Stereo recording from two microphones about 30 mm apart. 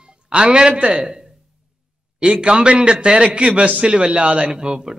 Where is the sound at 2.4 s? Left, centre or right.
Right.